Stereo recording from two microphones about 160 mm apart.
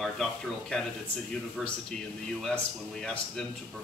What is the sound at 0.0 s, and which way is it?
A man's voice, centre (ahead or behind).